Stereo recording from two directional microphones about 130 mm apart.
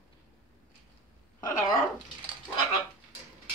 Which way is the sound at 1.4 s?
30° left (ahead or behind).